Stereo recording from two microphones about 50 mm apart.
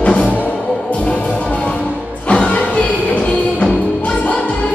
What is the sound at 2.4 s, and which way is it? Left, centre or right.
Music, left.